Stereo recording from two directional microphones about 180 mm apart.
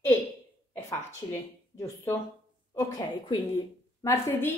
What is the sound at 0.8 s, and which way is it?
A woman's voice, 20° left (ahead or behind).